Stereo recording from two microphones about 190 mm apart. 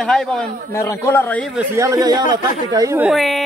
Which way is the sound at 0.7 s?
15° left (ahead or behind).